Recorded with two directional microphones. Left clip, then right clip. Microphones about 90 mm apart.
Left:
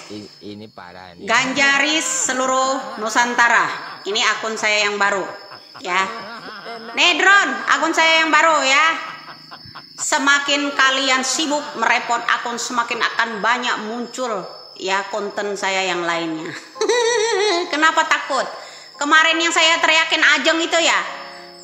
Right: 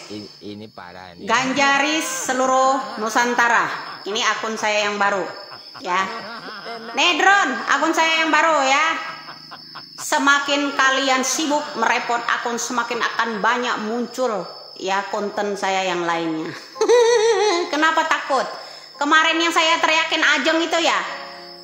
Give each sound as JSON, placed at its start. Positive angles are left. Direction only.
{"t": 1.2, "sound": "a woman's voice", "side_deg": -30}
{"t": 2.7, "sound": "a man's voice", "side_deg": 0}
{"t": 3.1, "sound": "a woman's voice", "side_deg": -25}
{"t": 10.0, "sound": "a woman's voice", "side_deg": -30}
{"t": 11.4, "sound": "a man's voice", "side_deg": 0}
{"t": 11.8, "sound": "a woman's voice", "side_deg": -25}